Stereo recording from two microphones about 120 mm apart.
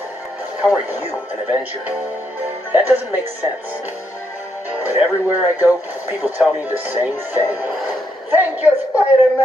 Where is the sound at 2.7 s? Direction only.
15° right (ahead or behind).